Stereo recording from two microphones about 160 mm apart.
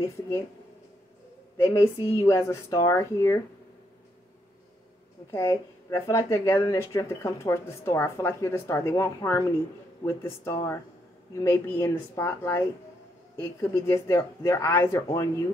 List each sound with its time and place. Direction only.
1.6 s speech: 15° left (ahead or behind)
5.3 s speech: 15° left (ahead or behind)